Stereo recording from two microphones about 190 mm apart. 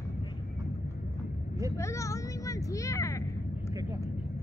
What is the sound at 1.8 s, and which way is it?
A child's voice, 15° left (ahead or behind).